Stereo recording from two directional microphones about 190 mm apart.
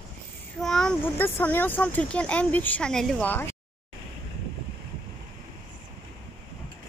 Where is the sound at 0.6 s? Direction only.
Centre (ahead or behind).